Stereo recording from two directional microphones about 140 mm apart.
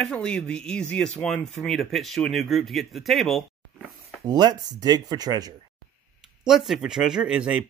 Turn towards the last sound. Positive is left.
turn(degrees=-5)  # may be behind; listen again after turning